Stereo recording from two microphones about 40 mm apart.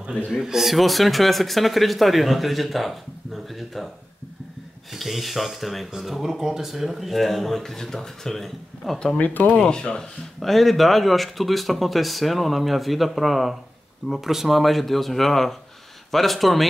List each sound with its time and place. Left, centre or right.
0.3 s speech: centre
4.9 s speech: centre
9.1 s speech: left
9.7 s speech: left
10.4 s speech: centre